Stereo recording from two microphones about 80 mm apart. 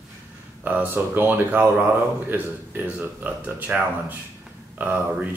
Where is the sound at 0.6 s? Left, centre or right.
Right.